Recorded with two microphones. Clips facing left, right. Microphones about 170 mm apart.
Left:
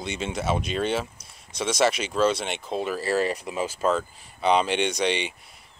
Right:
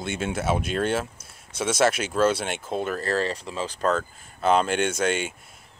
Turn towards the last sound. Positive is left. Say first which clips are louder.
# right 1 dB
turn(degrees=-5)  # may be behind; listen again after turning